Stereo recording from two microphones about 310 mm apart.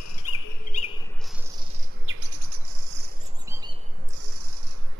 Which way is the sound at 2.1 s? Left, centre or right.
Right.